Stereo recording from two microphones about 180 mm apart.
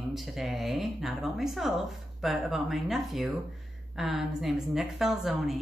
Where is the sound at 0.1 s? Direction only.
Centre (ahead or behind).